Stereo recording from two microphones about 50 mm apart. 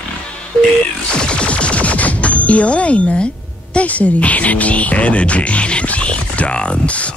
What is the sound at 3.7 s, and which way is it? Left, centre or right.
Speech, left.